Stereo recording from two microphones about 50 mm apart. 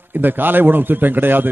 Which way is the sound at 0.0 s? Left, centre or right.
Right.